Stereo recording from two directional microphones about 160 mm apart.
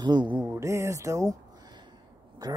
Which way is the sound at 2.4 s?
25° right (ahead or behind).